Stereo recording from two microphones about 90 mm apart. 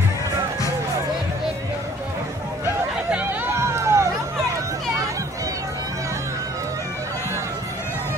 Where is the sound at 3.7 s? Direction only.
30° right (ahead or behind).